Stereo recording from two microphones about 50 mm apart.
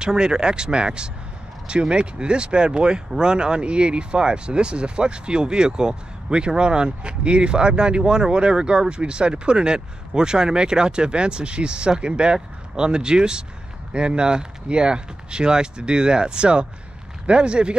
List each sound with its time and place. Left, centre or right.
0.0 s speech: centre